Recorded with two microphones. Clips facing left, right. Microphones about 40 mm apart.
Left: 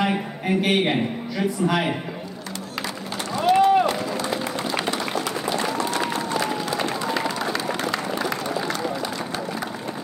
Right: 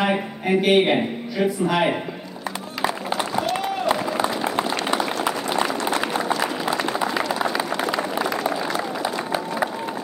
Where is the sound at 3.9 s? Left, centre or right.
Centre.